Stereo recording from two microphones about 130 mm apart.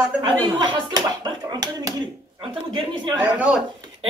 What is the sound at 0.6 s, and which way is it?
Speech, 35° right (ahead or behind).